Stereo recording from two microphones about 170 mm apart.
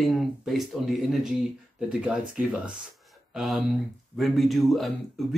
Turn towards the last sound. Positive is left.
turn(degrees=0)  # may be behind; listen again after turning